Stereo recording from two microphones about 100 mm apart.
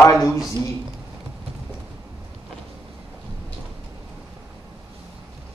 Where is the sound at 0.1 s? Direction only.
30° left (ahead or behind).